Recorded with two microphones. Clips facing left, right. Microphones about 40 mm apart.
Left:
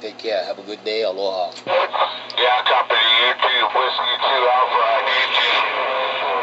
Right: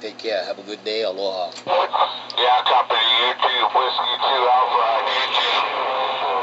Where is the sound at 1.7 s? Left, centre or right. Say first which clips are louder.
Even; centre.